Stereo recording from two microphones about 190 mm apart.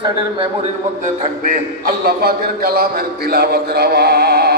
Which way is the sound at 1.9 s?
55° right (ahead or behind).